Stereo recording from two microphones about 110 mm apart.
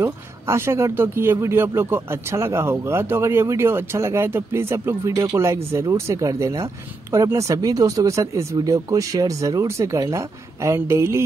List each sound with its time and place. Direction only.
0.0 s speech: 25° right (ahead or behind)